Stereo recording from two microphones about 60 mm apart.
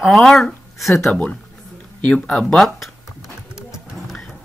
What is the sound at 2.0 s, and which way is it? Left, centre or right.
Speech, centre.